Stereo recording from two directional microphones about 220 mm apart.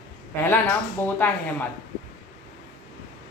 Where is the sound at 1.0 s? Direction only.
10° left (ahead or behind).